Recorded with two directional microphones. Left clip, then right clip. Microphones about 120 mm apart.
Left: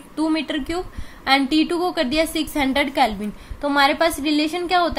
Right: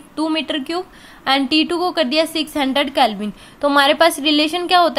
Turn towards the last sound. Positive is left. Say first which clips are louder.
# right 5 dB
turn(degrees=-50)  # may be behind; listen again after turning